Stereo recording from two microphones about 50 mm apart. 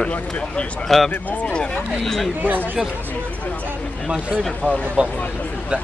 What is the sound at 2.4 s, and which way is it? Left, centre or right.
Speech, right.